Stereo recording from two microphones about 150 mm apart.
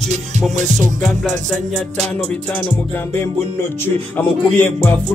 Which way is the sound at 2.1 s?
10° left (ahead or behind).